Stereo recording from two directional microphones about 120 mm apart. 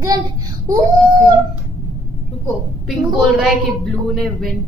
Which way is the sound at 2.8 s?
Centre (ahead or behind).